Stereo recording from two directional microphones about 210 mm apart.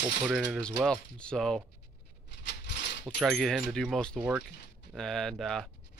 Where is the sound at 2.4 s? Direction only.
55° left (ahead or behind).